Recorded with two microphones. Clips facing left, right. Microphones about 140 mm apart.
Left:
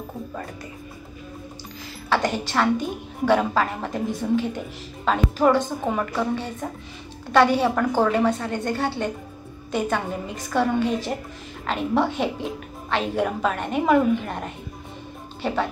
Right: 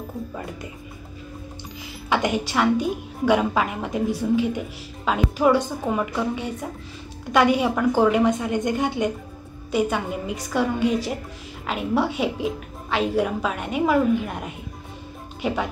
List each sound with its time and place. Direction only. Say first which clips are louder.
2.0 s a woman's voice: right 1 dB; 15° right (ahead or behind)